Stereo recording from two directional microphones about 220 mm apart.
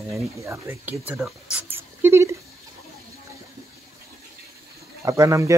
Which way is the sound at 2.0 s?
10° right (ahead or behind).